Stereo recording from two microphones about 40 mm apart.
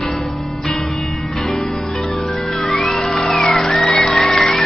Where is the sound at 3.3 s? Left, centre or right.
Centre.